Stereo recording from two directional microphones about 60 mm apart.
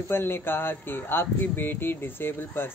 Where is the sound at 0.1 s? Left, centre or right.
Left.